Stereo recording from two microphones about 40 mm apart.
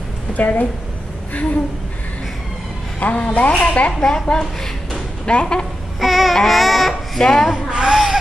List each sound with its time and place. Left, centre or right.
0.4 s a woman's voice: left
3.0 s a woman's voice: left
4.0 s a woman's voice: centre
5.2 s speech: left
5.9 s babbling: centre
6.3 s baby cry: centre
7.2 s a child's voice: centre
7.5 s a sound: centre